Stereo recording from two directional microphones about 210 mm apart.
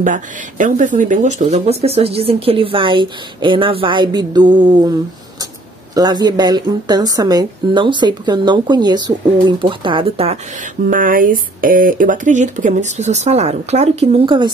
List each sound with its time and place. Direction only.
0.0 s a woman's voice: 40° right (ahead or behind); by 4.9 s 20° right (ahead or behind)
5.9 s a woman's voice: 20° right (ahead or behind)